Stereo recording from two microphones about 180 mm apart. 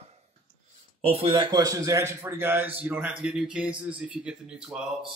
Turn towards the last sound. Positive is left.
turn(degrees=-5)  # may be behind; listen again after turning